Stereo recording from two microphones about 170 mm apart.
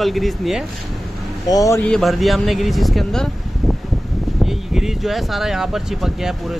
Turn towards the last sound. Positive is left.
turn(degrees=0)  # may be behind; listen again after turning